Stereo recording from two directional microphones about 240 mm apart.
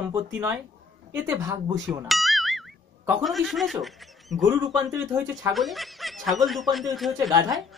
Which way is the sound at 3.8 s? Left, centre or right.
Centre.